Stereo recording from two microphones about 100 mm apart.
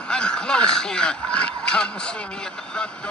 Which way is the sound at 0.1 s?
10° left (ahead or behind).